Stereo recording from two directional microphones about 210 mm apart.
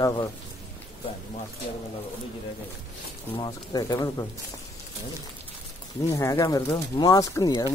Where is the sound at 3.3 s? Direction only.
20° left (ahead or behind).